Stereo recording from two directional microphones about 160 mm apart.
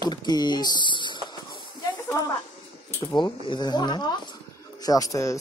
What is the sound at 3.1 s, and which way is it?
Speech, 30° left (ahead or behind).